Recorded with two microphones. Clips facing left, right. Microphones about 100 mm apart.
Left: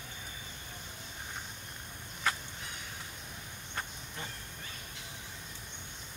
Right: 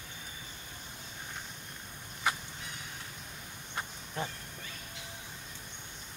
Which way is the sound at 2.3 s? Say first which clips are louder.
Right 1 dB; 15° right (ahead or behind).